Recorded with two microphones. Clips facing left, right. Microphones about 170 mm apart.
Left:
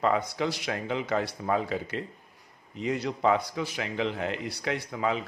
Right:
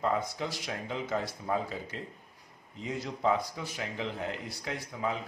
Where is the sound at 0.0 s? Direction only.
80° left.